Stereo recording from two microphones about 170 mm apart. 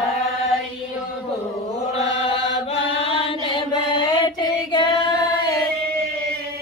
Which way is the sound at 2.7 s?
30° left (ahead or behind).